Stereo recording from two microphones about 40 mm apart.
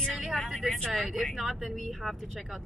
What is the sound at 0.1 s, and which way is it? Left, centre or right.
Vehicle, centre.